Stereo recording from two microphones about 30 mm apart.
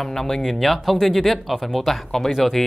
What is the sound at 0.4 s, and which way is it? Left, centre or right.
Speech, centre.